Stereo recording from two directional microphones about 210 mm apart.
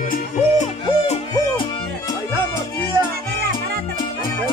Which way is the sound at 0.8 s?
25° left (ahead or behind).